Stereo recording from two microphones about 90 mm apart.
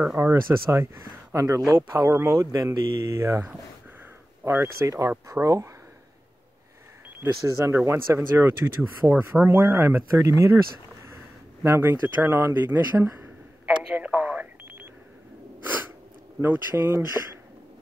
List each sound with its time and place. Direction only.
0.2 s speech: 35° right (ahead or behind)
4.5 s speech: 30° right (ahead or behind)
7.2 s speech: 35° right (ahead or behind)
10.1 s speech: 40° right (ahead or behind)
11.6 s speech: 30° right (ahead or behind)
13.9 s a sound: 20° right (ahead or behind)
15.6 s sneeze: 20° right (ahead or behind)
16.3 s speech: 25° right (ahead or behind)